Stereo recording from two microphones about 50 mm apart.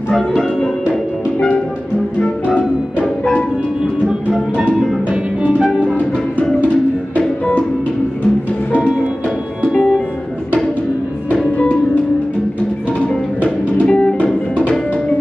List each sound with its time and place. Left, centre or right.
7.2 s music: left
9.7 s music: centre
11.2 s music: left
13.7 s music: centre